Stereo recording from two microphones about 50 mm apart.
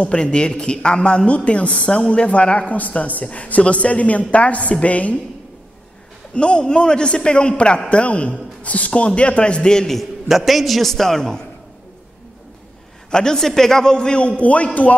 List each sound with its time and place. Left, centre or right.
0.0 s a man's voice: left
6.3 s a man's voice: centre
9.9 s a man's voice: centre
13.1 s a man's voice: centre; by 15.0 s left